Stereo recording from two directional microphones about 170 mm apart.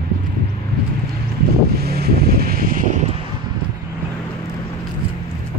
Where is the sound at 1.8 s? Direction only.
70° right (ahead or behind); by 3.1 s 50° right (ahead or behind).